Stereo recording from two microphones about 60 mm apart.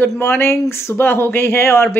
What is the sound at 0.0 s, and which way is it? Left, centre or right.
Speech, left.